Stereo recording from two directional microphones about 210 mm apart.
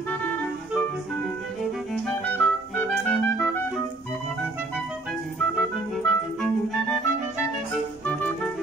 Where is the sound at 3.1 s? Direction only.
5° left (ahead or behind).